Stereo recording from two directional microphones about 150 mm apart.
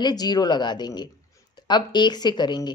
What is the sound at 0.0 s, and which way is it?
Speech, 25° left (ahead or behind).